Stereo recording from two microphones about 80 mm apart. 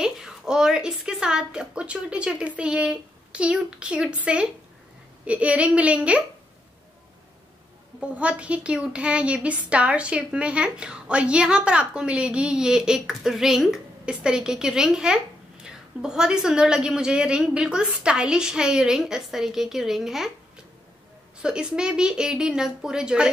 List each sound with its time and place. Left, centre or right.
0.0 s a woman's voice: centre
8.0 s a woman's voice: centre